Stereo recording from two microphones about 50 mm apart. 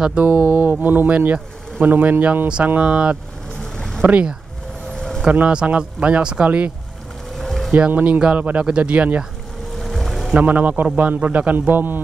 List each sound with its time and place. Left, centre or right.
0.2 s a man's voice: right
2.9 s speech: right
3.7 s boat: centre
4.9 s vehicle: centre
5.5 s speech: right
7.3 s boat: centre
7.7 s a man's voice: right
9.8 s music: centre
10.3 s a man's voice: right